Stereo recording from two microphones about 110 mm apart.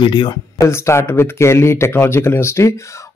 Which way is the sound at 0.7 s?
25° left (ahead or behind).